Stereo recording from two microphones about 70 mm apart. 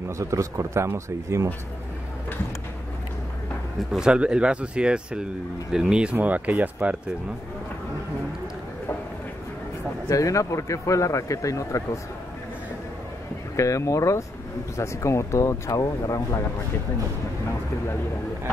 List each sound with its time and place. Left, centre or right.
0.2 s speech: right
3.9 s speech: centre
6.1 s speech: right
10.0 s speech: left
13.6 s speech: left